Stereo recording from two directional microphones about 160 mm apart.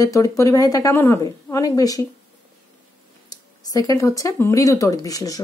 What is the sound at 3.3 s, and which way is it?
A woman's voice, 25° left (ahead or behind).